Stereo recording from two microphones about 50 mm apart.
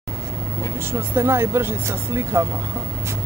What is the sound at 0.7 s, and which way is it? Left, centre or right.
Speech, right.